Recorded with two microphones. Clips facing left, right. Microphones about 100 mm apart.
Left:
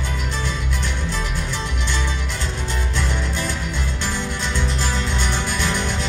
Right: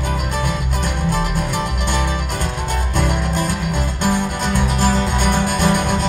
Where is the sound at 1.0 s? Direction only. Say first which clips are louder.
Right 6 dB; 50° right (ahead or behind).